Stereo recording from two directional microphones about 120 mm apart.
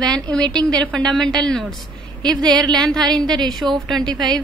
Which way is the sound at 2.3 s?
35° right (ahead or behind).